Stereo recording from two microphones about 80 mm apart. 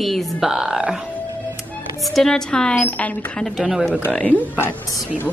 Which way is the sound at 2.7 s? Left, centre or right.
Left.